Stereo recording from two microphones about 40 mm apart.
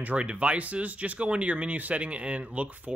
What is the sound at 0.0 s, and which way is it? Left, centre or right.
Speech, right.